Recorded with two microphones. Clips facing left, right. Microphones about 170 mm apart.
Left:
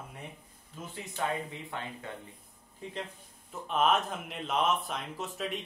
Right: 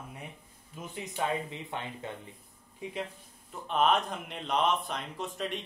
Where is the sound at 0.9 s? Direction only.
20° right (ahead or behind).